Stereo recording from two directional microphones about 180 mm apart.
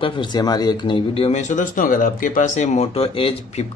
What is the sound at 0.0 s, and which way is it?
Speech, 25° left (ahead or behind).